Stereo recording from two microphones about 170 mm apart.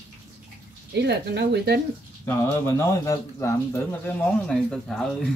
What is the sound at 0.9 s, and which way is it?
Speech, 75° right (ahead or behind).